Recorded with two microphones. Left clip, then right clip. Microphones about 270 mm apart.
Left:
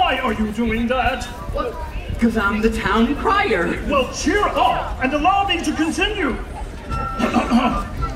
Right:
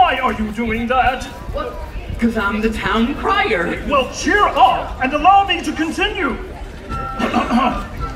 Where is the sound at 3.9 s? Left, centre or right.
Centre.